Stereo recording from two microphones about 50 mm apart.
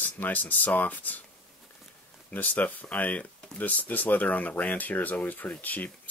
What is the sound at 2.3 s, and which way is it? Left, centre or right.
Speech, left.